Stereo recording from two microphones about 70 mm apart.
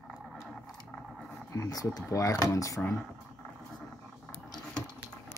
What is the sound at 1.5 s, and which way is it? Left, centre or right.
Speech, left.